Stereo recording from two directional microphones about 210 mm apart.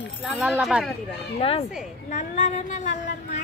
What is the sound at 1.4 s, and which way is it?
A woman's voice, 25° left (ahead or behind).